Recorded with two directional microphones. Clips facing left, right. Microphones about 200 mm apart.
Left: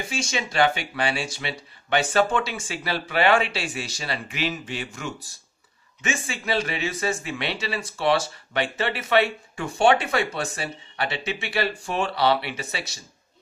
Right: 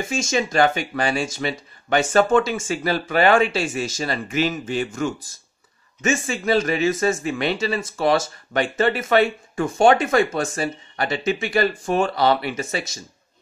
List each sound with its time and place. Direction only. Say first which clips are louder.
0.1 s speech: right 7 dB; 45° right (ahead or behind)